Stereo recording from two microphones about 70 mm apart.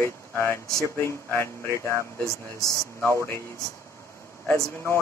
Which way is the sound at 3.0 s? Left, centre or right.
Left.